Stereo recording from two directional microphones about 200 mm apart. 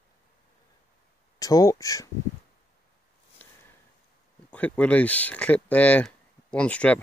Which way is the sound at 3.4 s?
10° left (ahead or behind).